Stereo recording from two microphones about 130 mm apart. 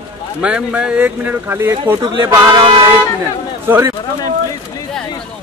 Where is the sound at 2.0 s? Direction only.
35° right (ahead or behind).